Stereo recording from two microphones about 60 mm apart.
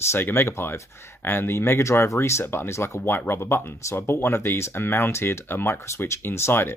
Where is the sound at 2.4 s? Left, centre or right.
Left.